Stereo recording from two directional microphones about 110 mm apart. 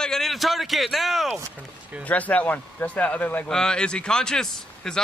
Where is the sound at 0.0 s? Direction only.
5° left (ahead or behind).